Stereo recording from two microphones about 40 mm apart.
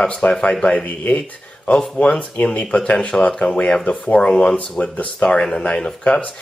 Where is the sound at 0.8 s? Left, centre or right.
Left.